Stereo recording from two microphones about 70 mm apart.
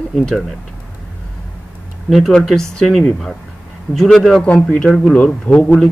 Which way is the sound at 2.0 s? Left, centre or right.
Centre.